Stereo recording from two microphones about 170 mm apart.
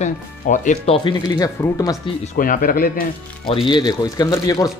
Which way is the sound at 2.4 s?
55° left (ahead or behind).